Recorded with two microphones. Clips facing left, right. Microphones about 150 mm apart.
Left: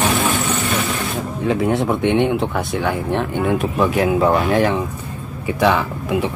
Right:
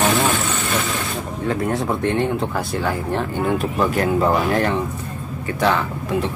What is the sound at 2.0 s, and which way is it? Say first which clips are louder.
Speech: left 4 dB; 85° left.